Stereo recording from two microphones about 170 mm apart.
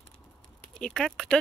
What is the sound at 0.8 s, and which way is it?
Speech, 5° left (ahead or behind).